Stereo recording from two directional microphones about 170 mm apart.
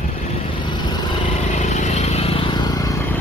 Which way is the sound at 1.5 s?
45° left (ahead or behind).